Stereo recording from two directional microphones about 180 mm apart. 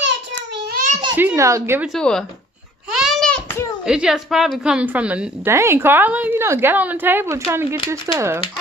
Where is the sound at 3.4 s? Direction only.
15° left (ahead or behind).